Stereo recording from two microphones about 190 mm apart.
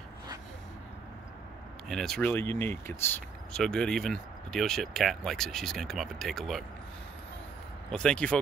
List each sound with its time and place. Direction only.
1.9 s speech: centre (ahead or behind)
7.9 s speech: 5° left (ahead or behind)